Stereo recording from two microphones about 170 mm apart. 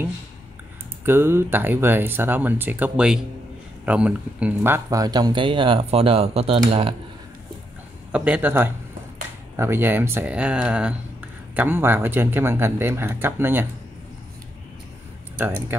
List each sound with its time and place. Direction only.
1.0 s speech: 15° right (ahead or behind); by 7.0 s 35° right (ahead or behind)
8.1 s speech: 10° right (ahead or behind)